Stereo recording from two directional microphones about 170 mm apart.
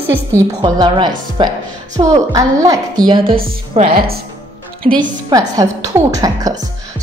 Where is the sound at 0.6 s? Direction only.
25° right (ahead or behind).